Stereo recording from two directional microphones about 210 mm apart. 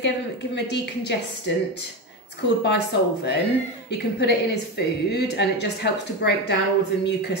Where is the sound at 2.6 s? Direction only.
55° left (ahead or behind).